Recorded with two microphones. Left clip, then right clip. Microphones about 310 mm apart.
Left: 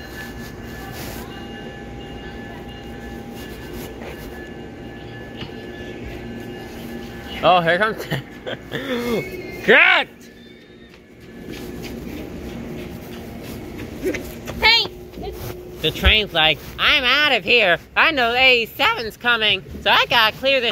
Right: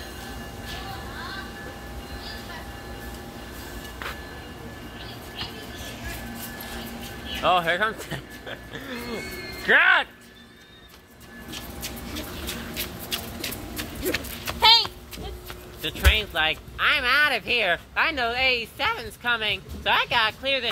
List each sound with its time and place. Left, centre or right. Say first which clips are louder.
7.4 s speech: left 6 dB; centre
14.4 s a sound: left 2 dB; right
15.8 s speech: left 7 dB; centre